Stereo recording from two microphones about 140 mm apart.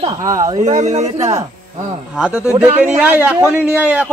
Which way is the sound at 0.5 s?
60° right (ahead or behind).